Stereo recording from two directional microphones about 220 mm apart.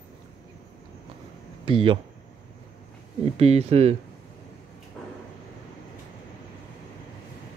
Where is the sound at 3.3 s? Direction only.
30° right (ahead or behind).